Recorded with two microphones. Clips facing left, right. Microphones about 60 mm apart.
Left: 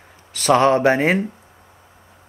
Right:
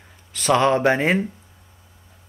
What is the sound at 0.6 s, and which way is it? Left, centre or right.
Speech, centre.